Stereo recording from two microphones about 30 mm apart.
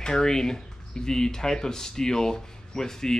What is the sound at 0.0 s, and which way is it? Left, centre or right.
Speech, left.